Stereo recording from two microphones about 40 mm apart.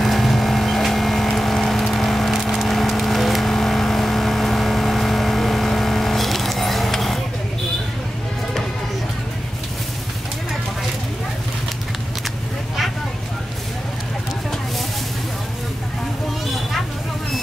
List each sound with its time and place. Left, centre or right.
0.0 s vehicle: centre